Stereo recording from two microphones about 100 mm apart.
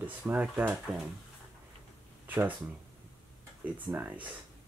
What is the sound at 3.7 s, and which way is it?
Speech, 20° right (ahead or behind).